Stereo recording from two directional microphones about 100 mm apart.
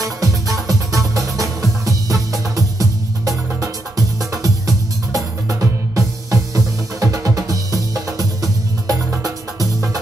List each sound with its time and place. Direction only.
0.0 s music: 35° right (ahead or behind)